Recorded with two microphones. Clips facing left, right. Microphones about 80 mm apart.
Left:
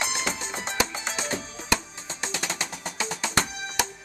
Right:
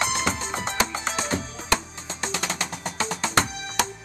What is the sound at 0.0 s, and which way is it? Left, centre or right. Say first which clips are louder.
Music: right 4 dB; right.